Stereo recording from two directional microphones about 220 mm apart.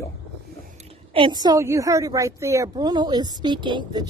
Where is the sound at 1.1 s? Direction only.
20° right (ahead or behind).